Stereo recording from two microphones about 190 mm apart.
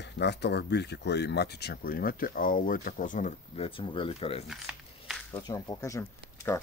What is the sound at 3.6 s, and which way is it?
Speech, 25° left (ahead or behind).